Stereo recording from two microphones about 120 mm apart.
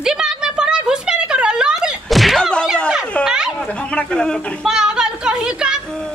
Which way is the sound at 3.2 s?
5° right (ahead or behind).